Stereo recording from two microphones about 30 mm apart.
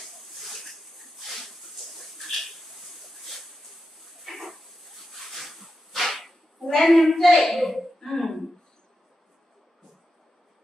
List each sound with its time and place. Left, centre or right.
0.0 s a sound: centre
4.2 s dog: centre
6.6 s a woman's voice: centre